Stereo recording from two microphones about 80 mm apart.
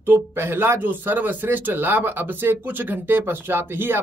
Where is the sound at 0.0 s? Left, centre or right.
Right.